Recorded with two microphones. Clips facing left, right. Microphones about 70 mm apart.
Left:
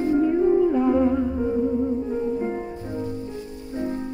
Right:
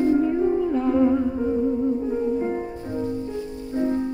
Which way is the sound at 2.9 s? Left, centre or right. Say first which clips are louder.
Right 4 dB; right.